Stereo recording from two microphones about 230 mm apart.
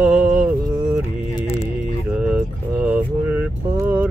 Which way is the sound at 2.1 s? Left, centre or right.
Centre.